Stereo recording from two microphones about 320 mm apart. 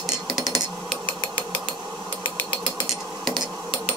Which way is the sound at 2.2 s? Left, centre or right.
Centre.